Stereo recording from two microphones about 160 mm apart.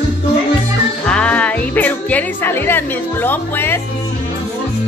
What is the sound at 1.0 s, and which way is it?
Music, 5° left (ahead or behind).